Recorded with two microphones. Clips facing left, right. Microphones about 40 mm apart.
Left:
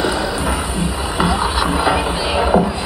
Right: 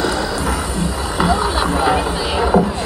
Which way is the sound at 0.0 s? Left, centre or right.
Centre.